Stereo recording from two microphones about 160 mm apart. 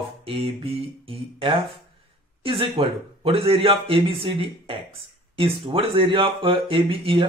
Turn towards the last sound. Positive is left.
turn(degrees=-35)  # may be behind; listen again after turning